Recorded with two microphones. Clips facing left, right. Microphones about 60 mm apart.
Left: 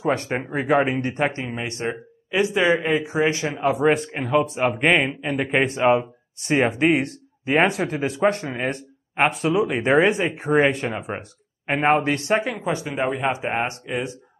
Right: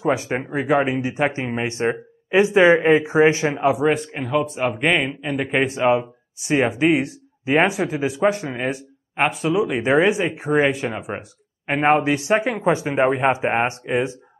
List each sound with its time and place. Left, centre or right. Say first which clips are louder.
0.0 s speech: right 2 dB; centre
1.3 s speech: right 4 dB; right
3.6 s speech: even; centre
12.6 s speech: right 6 dB; right